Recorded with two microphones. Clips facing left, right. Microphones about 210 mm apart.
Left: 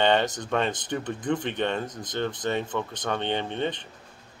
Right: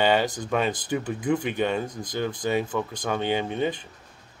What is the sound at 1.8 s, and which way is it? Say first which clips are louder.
Speech: right 2 dB; 20° left (ahead or behind).